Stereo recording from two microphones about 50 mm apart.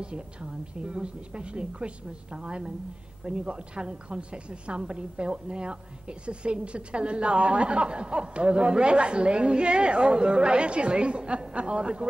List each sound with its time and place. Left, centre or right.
0.0 s a woman's voice: centre